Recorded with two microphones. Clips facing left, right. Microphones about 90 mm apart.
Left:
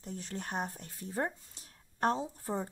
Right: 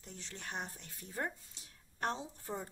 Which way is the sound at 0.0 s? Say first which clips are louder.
Left 8 dB; 40° left (ahead or behind).